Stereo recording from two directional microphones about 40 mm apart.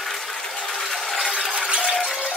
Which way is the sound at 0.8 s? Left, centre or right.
Centre.